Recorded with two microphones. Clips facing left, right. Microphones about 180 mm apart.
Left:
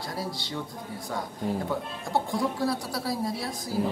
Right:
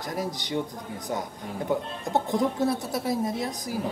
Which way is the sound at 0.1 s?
20° right (ahead or behind).